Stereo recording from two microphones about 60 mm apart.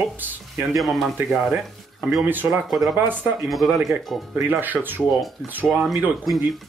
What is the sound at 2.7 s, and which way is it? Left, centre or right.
Stir, centre.